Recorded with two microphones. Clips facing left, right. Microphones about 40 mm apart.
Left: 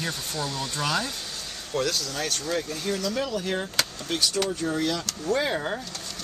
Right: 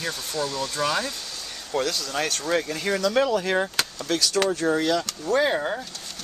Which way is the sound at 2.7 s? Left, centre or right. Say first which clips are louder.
Right 6 dB; right.